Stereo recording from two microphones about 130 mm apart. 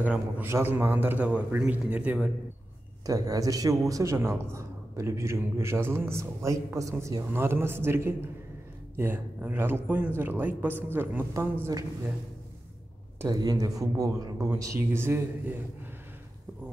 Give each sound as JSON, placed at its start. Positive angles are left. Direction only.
{"t": 0.0, "sound": "speech", "side_deg": -15}
{"t": 3.1, "sound": "a man's voice", "side_deg": -30}
{"t": 13.3, "sound": "a man's voice", "side_deg": -30}